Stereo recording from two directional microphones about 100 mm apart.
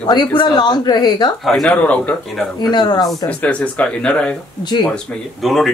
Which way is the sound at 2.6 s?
45° left (ahead or behind).